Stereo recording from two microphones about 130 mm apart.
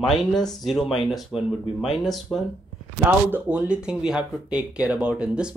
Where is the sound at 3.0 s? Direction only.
15° right (ahead or behind).